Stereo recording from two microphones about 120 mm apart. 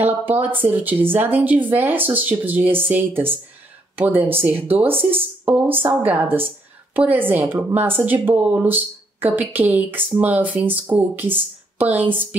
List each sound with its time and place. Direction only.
0.0 s speech: 15° right (ahead or behind)